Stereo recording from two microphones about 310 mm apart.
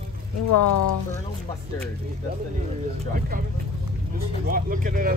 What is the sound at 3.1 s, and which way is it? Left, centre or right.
Speech, right.